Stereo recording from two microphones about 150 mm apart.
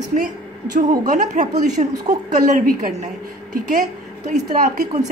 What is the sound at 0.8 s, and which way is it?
Speech, 60° right (ahead or behind).